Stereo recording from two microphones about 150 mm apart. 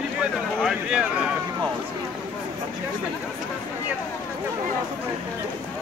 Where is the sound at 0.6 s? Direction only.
5° right (ahead or behind).